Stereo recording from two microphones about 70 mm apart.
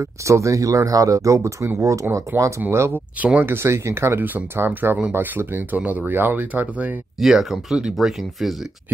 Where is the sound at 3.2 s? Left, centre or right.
Right.